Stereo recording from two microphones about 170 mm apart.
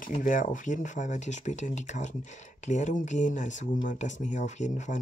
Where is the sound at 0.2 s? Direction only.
50° left (ahead or behind).